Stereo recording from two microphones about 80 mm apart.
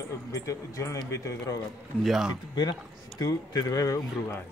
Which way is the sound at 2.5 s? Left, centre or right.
Left.